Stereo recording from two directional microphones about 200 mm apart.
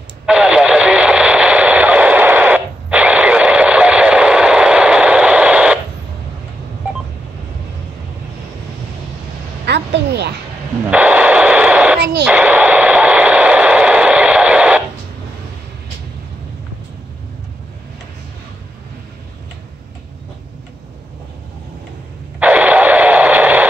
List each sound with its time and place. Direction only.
0.3 s radio: 5° right (ahead or behind)
9.7 s a sound: 55° right (ahead or behind)
10.9 s radio: 5° right (ahead or behind)
22.4 s radio: 5° right (ahead or behind)